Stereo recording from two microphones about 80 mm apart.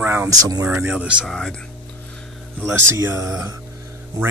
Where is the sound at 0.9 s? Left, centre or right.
Centre.